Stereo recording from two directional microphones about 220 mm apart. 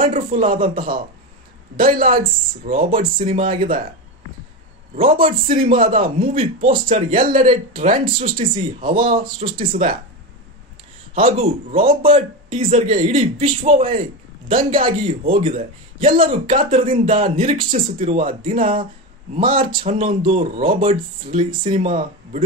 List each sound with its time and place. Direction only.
0.0 s speech: 35° right (ahead or behind)
1.8 s speech: 40° right (ahead or behind)
5.1 s speech: 40° right (ahead or behind)
6.3 s a man's voice: 30° right (ahead or behind)
11.3 s a man's voice: 25° right (ahead or behind)